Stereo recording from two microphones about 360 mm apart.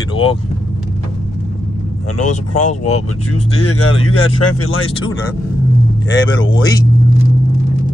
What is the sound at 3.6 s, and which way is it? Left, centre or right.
Speech, left.